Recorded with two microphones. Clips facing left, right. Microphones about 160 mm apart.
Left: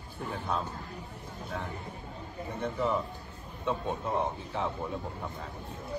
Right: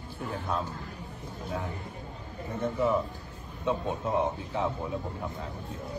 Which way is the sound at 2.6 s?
10° right (ahead or behind).